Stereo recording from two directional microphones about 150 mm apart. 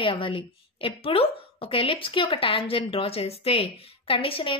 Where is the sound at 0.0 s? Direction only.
35° left (ahead or behind).